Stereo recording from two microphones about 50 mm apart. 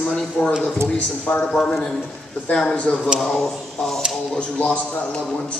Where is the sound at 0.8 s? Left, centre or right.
Left.